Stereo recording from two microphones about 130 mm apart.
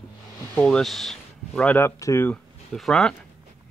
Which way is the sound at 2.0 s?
25° left (ahead or behind).